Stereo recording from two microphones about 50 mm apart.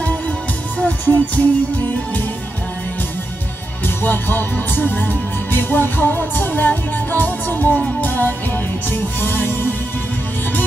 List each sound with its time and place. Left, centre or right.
0.7 s music: left
3.8 s music: left